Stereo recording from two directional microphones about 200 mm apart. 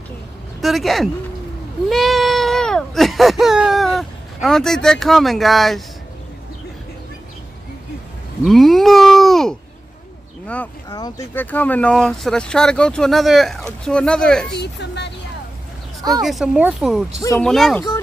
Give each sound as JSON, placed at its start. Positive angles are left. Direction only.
{"t": 0.6, "sound": "speech", "side_deg": 0}
{"t": 8.5, "sound": "speech", "side_deg": 0}
{"t": 10.9, "sound": "speech", "side_deg": 20}
{"t": 14.6, "sound": "speech", "side_deg": 60}
{"t": 16.2, "sound": "speech", "side_deg": 0}